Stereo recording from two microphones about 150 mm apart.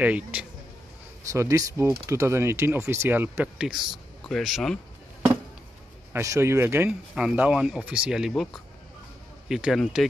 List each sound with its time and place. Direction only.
0.0 s speech: 10° right (ahead or behind)
1.3 s speech: 20° right (ahead or behind); by 4.7 s centre (ahead or behind)
6.1 s speech: 20° right (ahead or behind); by 10.0 s 5° right (ahead or behind)